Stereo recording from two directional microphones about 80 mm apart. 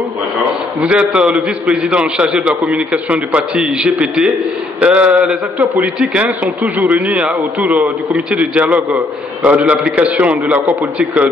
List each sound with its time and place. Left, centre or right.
0.7 s a man's voice: centre